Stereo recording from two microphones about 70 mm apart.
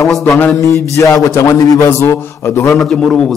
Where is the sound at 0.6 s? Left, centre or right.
Left.